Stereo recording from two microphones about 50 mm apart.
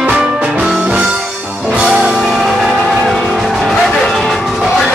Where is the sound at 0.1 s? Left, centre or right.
Centre.